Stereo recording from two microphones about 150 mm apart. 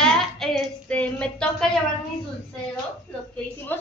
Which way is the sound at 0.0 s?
5° left (ahead or behind).